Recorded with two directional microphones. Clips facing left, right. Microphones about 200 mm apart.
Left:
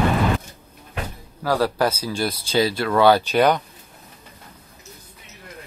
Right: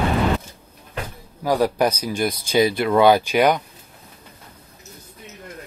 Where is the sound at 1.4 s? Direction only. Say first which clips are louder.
Right 2 dB; 15° right (ahead or behind).